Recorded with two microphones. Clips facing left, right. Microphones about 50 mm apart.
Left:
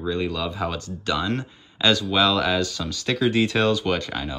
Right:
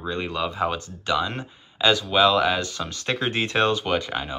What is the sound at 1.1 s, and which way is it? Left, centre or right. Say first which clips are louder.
Speech: right 1 dB; centre.